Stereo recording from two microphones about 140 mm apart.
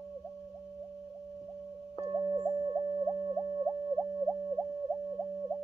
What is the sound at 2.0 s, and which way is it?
Music, 25° right (ahead or behind).